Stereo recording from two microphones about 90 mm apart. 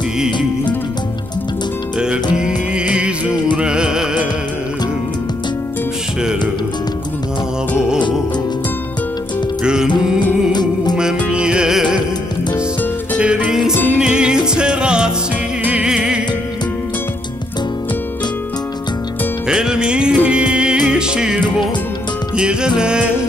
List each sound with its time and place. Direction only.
2.3 s music: 10° right (ahead or behind)
9.6 s music: 5° right (ahead or behind)
10.5 s music: 50° left (ahead or behind)
11.3 s music: 10° right (ahead or behind)
13.2 s music: 10° right (ahead or behind)
19.4 s music: 5° right (ahead or behind)